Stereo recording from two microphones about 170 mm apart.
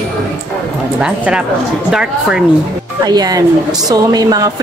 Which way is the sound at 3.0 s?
25° right (ahead or behind).